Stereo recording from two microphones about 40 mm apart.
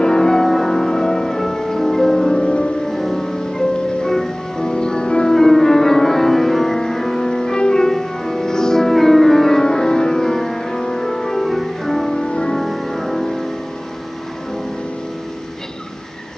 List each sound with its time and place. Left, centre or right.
0.0 s music: centre
2.9 s music: centre
5.3 s music: centre
12.2 s music: left
12.5 s music: centre